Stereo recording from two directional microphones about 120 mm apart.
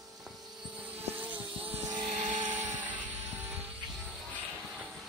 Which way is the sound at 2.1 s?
80° right.